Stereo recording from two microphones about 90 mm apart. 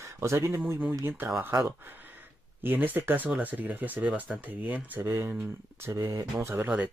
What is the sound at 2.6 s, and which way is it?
Speech, 20° right (ahead or behind).